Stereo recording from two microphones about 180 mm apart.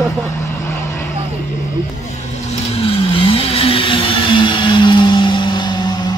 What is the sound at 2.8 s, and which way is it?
Vehicle, 30° left (ahead or behind).